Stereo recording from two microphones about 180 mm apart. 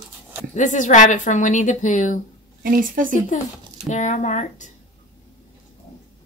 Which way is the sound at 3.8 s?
40° left (ahead or behind).